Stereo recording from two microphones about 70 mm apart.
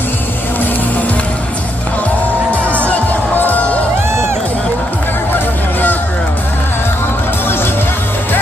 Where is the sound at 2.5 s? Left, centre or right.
Right.